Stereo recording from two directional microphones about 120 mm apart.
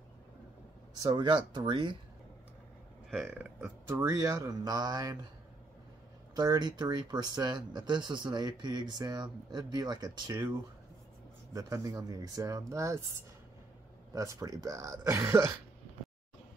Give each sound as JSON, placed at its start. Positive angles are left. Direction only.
{"t": 1.0, "sound": "speech", "side_deg": -35}
{"t": 3.1, "sound": "speech", "side_deg": -5}
{"t": 3.3, "sound": "speech", "side_deg": -15}
{"t": 3.9, "sound": "speech", "side_deg": -25}
{"t": 6.3, "sound": "speech", "side_deg": -35}
{"t": 14.1, "sound": "speech", "side_deg": -25}